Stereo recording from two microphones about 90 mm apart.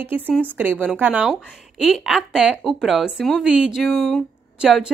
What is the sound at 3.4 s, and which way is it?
Speech, 10° right (ahead or behind).